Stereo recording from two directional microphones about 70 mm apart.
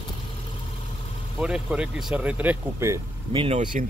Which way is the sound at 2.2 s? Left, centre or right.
Right.